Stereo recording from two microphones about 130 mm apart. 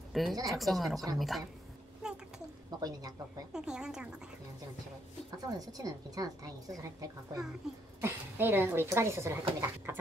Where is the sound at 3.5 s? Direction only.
5° right (ahead or behind).